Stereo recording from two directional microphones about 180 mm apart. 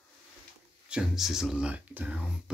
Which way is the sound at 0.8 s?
5° right (ahead or behind).